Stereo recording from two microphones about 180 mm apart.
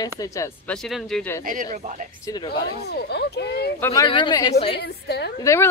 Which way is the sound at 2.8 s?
65° left (ahead or behind).